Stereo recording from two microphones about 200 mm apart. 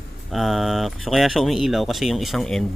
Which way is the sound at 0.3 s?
Centre (ahead or behind).